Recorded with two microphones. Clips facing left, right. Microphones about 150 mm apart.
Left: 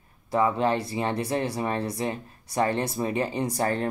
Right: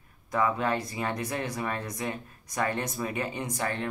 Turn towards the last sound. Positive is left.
turn(degrees=35)  # may be behind; listen again after turning